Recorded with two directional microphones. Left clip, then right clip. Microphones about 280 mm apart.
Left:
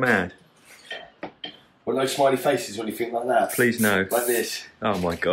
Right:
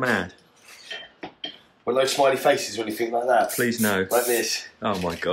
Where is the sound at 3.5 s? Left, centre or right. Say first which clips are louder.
Left 2 dB; centre.